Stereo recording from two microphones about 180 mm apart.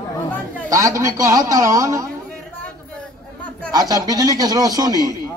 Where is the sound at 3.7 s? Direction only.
20° right (ahead or behind).